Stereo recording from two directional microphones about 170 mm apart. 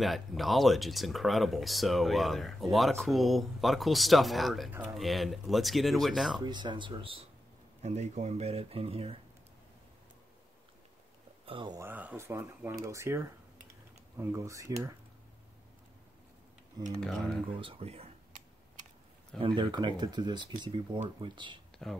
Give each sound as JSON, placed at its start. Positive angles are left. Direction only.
{"t": 0.0, "sound": "speech", "side_deg": 0}
{"t": 6.4, "sound": "speech", "side_deg": -25}
{"t": 11.4, "sound": "speech", "side_deg": -30}
{"t": 11.8, "sound": "speech", "side_deg": -10}
{"t": 17.0, "sound": "speech", "side_deg": 0}
{"t": 17.6, "sound": "speech", "side_deg": -35}
{"t": 19.4, "sound": "speech", "side_deg": -30}
{"t": 21.8, "sound": "speech", "side_deg": 0}